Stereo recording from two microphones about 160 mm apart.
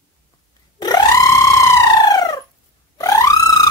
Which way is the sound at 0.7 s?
25° left (ahead or behind).